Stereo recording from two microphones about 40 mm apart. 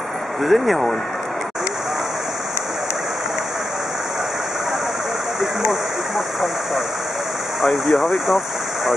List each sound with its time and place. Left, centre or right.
0.4 s speech: centre
5.4 s a sound: centre
7.6 s speech: centre